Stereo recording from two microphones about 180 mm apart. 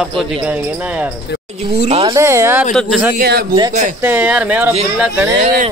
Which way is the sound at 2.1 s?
15° right (ahead or behind).